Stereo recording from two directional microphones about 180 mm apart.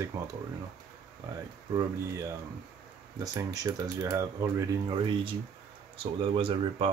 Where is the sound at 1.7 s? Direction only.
20° right (ahead or behind).